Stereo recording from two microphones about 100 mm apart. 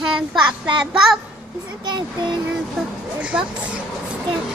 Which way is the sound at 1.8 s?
45° right (ahead or behind).